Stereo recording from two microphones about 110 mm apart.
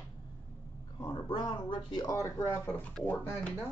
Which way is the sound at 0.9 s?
40° left (ahead or behind).